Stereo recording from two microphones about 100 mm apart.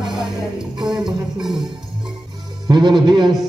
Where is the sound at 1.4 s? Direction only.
5° right (ahead or behind).